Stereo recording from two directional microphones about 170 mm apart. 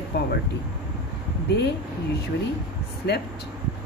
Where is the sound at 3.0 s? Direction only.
75° left (ahead or behind).